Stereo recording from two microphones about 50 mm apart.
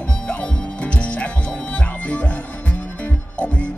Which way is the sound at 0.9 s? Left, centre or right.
Left.